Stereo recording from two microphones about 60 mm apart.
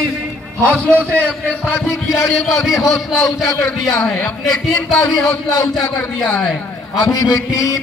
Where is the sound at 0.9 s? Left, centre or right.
Left.